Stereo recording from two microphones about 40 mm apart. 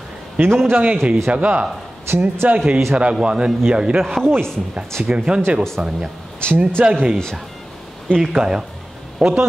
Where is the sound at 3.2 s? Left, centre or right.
Right.